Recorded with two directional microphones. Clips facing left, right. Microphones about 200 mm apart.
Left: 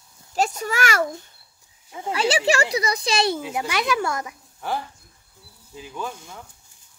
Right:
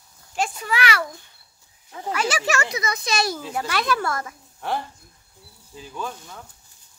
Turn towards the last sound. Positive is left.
turn(degrees=10)  # may be behind; listen again after turning